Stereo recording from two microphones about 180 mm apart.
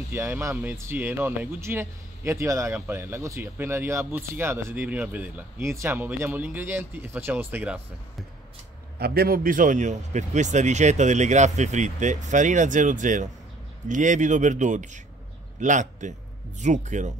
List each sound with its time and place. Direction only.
0.1 s speech: 15° right (ahead or behind)
9.0 s a man's voice: 60° right (ahead or behind); by 17.1 s 40° right (ahead or behind)